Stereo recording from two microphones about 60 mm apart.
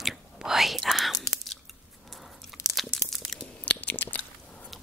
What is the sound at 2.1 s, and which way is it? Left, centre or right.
Biting, centre.